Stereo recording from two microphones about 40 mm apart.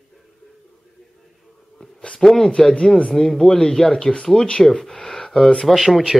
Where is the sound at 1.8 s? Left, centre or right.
Left.